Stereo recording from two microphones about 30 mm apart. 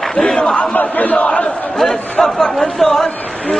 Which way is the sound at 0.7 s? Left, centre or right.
Left.